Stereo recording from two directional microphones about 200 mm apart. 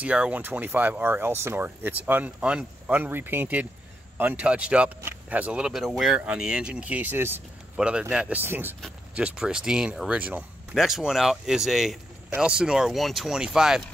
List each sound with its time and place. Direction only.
0.0 s speech: 5° right (ahead or behind)